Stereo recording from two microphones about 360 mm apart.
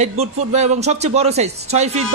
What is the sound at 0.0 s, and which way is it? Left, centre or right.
Speech, centre.